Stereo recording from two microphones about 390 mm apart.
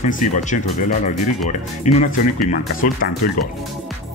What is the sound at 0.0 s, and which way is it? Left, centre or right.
Speech, centre.